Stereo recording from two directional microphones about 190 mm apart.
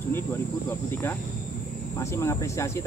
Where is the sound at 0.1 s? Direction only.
10° left (ahead or behind).